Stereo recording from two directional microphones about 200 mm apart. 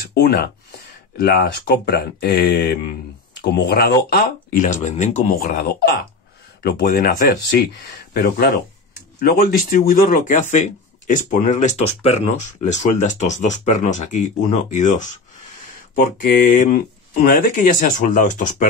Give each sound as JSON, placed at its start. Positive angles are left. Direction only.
{"t": 0.1, "sound": "speech", "side_deg": 55}
{"t": 4.6, "sound": "speech", "side_deg": 40}